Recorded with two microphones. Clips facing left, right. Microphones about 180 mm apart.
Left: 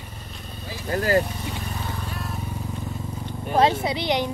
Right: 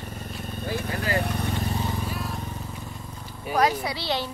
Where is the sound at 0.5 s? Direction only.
55° right (ahead or behind).